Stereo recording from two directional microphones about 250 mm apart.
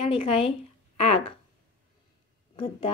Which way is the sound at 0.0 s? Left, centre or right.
Left.